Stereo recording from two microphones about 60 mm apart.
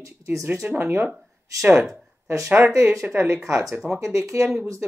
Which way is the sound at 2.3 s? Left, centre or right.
Right.